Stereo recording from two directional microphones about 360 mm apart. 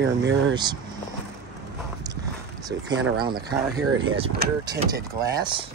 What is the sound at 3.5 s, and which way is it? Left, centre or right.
Speech, right.